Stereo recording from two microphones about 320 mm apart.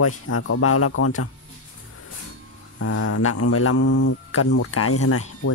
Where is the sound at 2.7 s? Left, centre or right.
Left.